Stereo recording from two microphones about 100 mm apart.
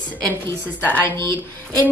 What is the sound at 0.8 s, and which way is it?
Speech, 15° left (ahead or behind).